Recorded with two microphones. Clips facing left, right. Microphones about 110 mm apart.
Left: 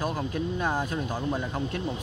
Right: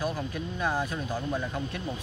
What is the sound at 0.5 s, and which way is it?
Speech, 25° left (ahead or behind).